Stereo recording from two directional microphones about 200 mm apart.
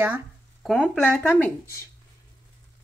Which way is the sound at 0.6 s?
Centre (ahead or behind).